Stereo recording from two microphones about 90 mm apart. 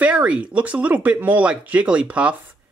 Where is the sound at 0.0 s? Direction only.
15° right (ahead or behind).